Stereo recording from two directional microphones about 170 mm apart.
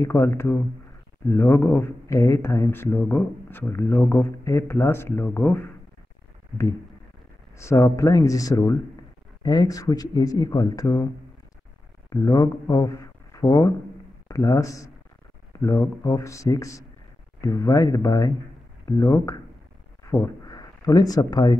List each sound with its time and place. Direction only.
0.0 s speech: 15° left (ahead or behind)
7.5 s speech: 15° left (ahead or behind)
12.1 s speech: 20° left (ahead or behind)
15.5 s a sound: 20° left (ahead or behind)
16.0 s speech: 15° left (ahead or behind)